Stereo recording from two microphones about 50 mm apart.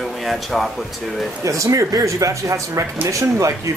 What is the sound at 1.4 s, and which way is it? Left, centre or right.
Speech, right.